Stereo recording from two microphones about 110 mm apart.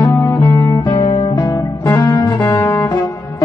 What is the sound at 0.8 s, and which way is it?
Guitar, 40° left (ahead or behind).